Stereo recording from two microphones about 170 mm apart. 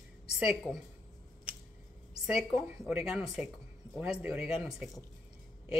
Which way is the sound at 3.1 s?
5° right (ahead or behind).